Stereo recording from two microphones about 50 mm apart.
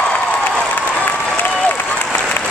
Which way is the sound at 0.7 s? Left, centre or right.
Left.